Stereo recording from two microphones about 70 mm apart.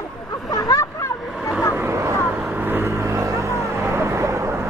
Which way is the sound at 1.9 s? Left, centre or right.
Right.